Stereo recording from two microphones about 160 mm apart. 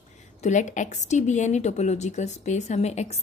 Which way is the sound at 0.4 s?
50° left (ahead or behind).